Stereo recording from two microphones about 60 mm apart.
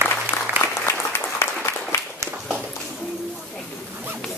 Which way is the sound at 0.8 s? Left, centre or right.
Left.